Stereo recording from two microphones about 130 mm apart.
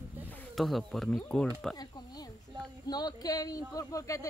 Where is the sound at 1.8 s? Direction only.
30° left (ahead or behind).